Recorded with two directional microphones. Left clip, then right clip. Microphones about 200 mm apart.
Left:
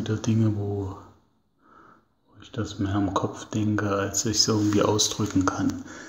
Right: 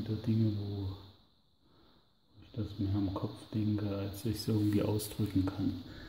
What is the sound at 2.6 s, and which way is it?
Speech, 5° left (ahead or behind).